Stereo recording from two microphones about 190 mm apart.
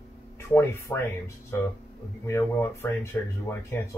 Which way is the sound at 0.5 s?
10° left (ahead or behind).